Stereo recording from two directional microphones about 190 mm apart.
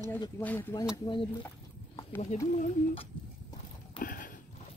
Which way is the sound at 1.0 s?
25° left (ahead or behind).